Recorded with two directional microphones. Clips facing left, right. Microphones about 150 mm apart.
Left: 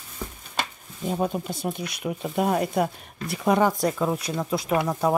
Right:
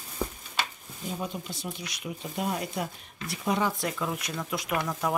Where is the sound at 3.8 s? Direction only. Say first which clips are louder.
Left 7 dB; 35° left (ahead or behind).